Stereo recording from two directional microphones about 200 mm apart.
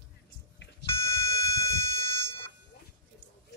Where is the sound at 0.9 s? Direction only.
15° left (ahead or behind).